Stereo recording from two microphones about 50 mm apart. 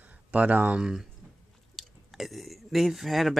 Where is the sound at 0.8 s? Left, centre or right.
Centre.